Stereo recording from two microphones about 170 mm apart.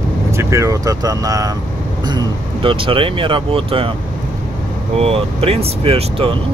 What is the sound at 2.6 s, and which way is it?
Speech, 30° right (ahead or behind).